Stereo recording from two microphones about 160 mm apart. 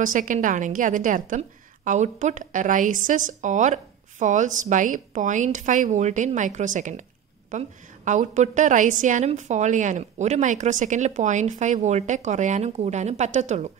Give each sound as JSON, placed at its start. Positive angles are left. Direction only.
{"t": 0.0, "sound": "a woman's voice", "side_deg": -55}